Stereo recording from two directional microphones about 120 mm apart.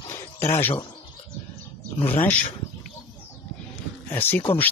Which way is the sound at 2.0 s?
15° left (ahead or behind).